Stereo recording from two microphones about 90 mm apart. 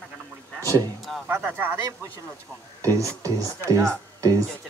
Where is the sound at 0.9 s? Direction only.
Centre (ahead or behind).